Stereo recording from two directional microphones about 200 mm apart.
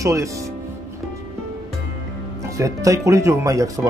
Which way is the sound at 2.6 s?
15° right (ahead or behind).